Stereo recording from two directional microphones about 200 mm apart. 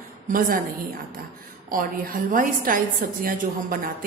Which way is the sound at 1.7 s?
45° right (ahead or behind).